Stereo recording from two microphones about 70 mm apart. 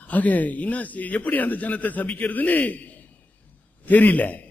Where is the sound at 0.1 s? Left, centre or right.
Left.